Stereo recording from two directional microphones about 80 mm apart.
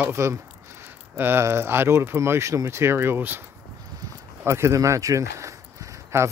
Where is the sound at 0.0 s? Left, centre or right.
Right.